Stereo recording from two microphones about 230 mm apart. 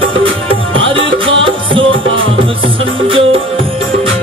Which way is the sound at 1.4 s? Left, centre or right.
Right.